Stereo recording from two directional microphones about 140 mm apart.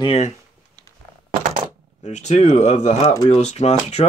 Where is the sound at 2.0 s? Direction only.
55° left (ahead or behind).